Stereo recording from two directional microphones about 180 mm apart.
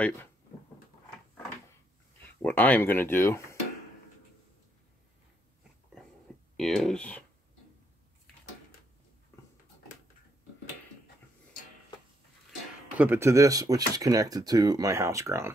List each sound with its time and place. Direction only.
2.4 s speech: 10° left (ahead or behind)
6.5 s speech: centre (ahead or behind)
12.9 s speech: 10° right (ahead or behind)